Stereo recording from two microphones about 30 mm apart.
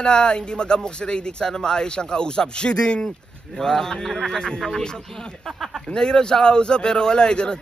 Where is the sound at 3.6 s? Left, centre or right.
Centre.